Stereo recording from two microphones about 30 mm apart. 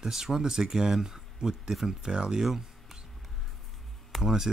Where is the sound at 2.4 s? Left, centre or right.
Centre.